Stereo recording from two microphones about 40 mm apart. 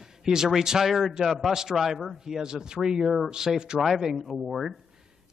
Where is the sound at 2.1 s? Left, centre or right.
Centre.